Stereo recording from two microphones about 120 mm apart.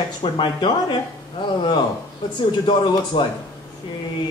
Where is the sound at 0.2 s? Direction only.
45° left (ahead or behind).